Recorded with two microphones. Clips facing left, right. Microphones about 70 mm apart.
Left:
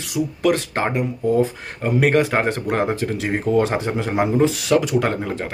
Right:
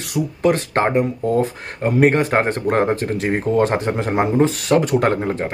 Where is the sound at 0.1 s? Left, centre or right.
Right.